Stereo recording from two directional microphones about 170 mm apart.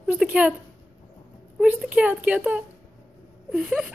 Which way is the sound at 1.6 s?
5° right (ahead or behind).